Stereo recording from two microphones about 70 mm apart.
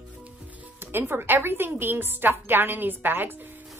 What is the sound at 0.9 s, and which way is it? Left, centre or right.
A woman's voice, right.